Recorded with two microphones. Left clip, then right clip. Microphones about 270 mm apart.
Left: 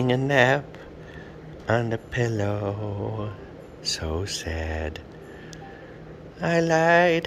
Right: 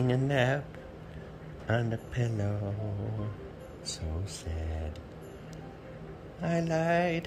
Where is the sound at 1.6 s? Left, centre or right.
Centre.